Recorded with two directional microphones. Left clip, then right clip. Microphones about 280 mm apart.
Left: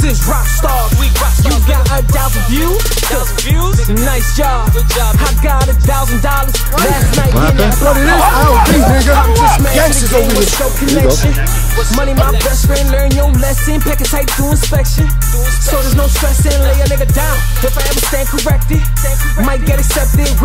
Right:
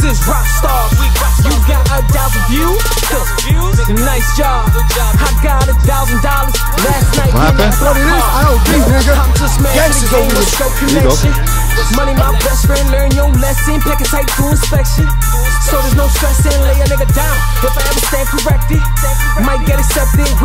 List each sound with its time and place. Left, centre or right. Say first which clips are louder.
3.9 s music: right 3 dB; right
8.0 s speech: left 3 dB; centre
8.6 s music: left 1 dB; right
9.7 s speech: even; centre
10.2 s music: even; right